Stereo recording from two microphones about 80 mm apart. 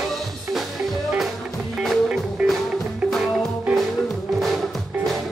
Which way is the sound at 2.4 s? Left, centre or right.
Centre.